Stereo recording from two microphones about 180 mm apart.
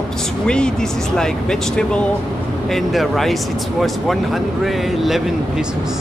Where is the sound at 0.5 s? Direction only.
5° left (ahead or behind).